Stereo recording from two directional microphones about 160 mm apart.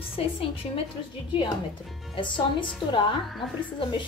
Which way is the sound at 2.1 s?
30° left (ahead or behind).